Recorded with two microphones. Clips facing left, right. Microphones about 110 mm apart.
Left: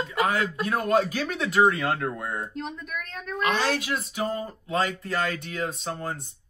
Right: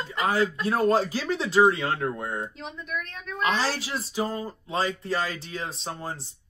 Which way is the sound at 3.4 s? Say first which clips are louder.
Left 1 dB; 30° right (ahead or behind).